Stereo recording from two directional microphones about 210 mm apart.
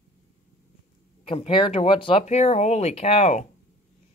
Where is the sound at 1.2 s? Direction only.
25° left (ahead or behind).